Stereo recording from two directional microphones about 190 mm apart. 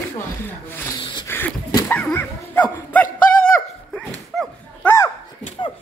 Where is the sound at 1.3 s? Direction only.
10° left (ahead or behind).